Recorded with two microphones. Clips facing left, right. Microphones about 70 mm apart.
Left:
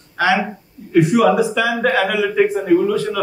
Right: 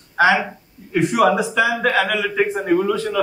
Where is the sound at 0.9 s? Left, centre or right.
Right.